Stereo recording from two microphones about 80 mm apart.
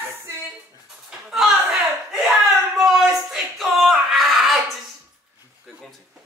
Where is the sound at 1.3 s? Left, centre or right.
Centre.